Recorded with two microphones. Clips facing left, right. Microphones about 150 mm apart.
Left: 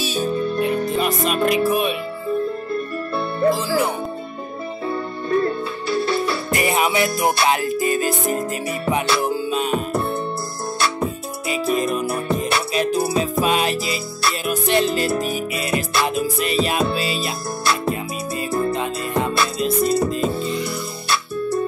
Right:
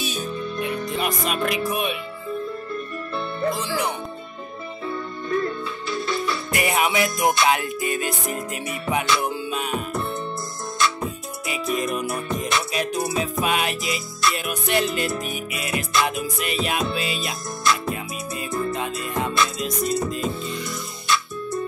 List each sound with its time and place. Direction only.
0.0 s music: 30° left (ahead or behind)
3.6 s speech: 45° left (ahead or behind)
4.8 s music: 35° left (ahead or behind)
11.4 s music: 35° left (ahead or behind)